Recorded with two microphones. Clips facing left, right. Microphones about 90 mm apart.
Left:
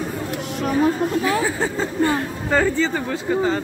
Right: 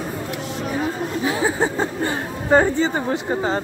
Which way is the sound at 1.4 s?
25° right (ahead or behind).